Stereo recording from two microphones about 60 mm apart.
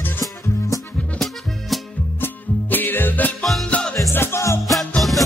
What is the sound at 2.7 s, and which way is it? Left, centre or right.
Music, left.